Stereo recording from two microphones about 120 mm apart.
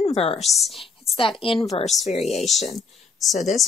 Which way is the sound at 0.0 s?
60° left (ahead or behind).